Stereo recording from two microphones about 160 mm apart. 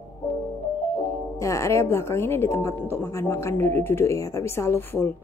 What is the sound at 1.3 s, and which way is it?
A woman's voice, 20° left (ahead or behind).